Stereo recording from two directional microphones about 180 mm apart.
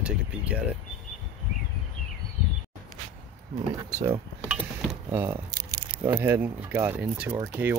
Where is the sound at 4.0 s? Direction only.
15° right (ahead or behind).